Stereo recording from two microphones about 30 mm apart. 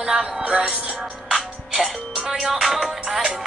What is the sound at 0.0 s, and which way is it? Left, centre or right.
Music, right.